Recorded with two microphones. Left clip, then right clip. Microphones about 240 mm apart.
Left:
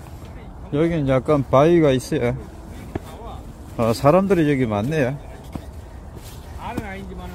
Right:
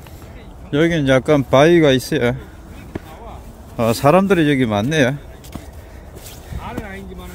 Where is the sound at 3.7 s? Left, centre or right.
Centre.